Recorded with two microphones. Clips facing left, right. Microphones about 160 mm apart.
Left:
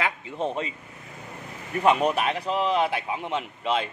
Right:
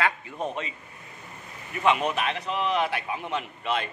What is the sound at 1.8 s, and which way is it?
Speech, 35° left (ahead or behind).